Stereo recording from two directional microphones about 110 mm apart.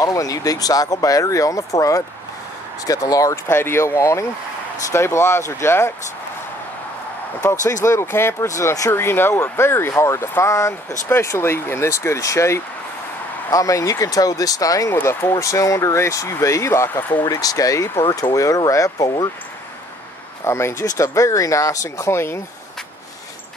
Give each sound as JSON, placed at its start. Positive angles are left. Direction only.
{"t": 0.0, "sound": "speech", "side_deg": 30}
{"t": 7.4, "sound": "speech", "side_deg": 30}
{"t": 15.0, "sound": "speech", "side_deg": 20}
{"t": 20.4, "sound": "speech", "side_deg": 25}